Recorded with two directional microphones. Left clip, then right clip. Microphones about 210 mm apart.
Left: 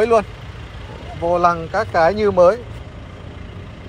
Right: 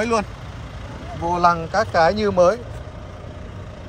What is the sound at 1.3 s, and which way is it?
Speech, 5° right (ahead or behind).